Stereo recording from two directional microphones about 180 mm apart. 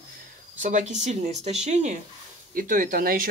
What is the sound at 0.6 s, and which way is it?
Speech, 40° right (ahead or behind).